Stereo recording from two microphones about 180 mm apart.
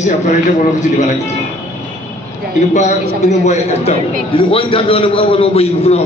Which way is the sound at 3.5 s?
35° left (ahead or behind).